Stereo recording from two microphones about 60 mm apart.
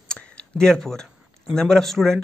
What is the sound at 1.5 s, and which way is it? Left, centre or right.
Speech, centre.